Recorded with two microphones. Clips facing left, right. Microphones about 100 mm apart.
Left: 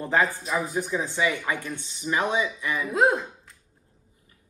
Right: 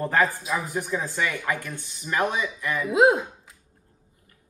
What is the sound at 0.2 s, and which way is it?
Speech, centre (ahead or behind).